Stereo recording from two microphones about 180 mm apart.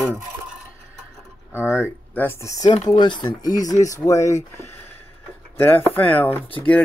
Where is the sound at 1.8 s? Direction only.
10° left (ahead or behind).